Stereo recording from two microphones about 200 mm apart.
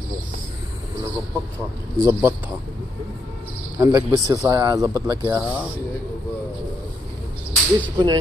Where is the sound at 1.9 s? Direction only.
15° right (ahead or behind).